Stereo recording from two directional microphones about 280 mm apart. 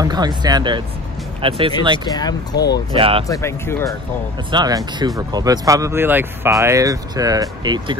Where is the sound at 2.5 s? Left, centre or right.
Left.